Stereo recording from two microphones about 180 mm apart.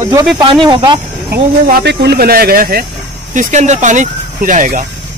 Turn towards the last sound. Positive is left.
turn(degrees=-45)  # may be behind; listen again after turning